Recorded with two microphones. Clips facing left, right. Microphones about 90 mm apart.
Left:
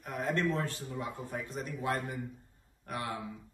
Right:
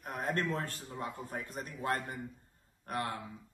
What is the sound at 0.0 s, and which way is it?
Speech, 45° right (ahead or behind).